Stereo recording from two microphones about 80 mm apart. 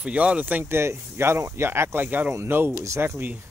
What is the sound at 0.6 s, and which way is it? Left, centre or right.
Speech, right.